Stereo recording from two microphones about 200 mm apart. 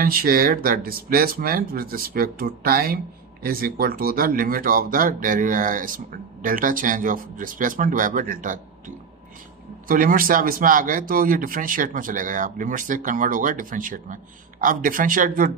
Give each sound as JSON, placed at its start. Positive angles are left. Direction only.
{"t": 0.0, "sound": "speech", "side_deg": -45}